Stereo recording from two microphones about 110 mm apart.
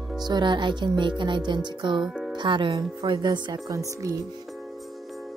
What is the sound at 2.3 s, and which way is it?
Speech, 45° right (ahead or behind).